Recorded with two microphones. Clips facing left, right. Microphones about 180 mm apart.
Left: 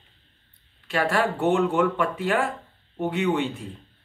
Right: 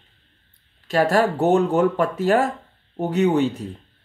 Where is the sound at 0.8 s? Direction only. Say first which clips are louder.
Right 5 dB; 40° right (ahead or behind).